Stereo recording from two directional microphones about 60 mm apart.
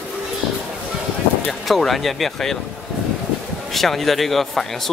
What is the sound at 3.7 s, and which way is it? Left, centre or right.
Speech, centre.